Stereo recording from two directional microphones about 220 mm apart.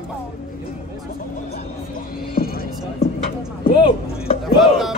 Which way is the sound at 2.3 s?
45° left (ahead or behind).